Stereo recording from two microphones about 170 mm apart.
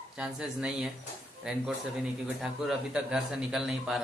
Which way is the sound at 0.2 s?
5° right (ahead or behind).